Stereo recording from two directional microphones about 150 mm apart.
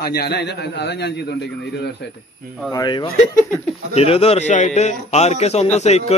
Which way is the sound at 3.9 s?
40° left (ahead or behind).